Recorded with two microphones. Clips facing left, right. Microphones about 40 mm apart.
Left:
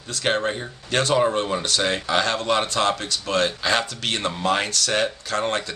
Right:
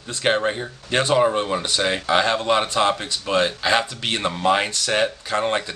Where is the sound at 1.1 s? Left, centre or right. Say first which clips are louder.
Right 2 dB; centre.